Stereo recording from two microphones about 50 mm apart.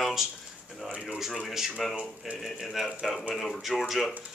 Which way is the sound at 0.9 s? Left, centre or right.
Right.